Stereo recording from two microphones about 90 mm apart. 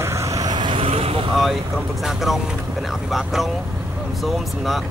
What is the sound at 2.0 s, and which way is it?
Speech, 5° right (ahead or behind).